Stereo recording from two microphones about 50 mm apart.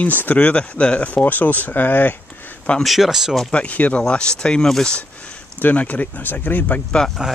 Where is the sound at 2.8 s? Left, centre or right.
Centre.